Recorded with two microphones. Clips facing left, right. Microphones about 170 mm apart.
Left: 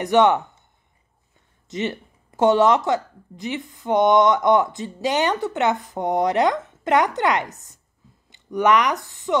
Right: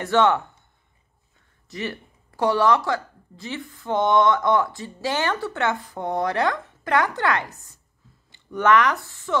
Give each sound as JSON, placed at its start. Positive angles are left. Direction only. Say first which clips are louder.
{"t": 0.0, "sound": "speech", "louder": "left 3 dB", "side_deg": 15}
{"t": 1.7, "sound": "speech", "louder": "left 5 dB", "side_deg": 20}